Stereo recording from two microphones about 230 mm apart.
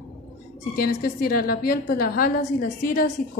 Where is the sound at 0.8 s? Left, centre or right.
Left.